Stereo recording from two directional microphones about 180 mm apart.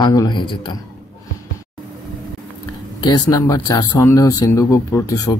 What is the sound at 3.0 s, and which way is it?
Speech, 20° left (ahead or behind).